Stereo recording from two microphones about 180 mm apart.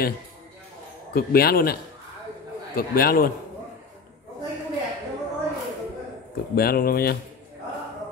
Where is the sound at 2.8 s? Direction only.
55° left (ahead or behind).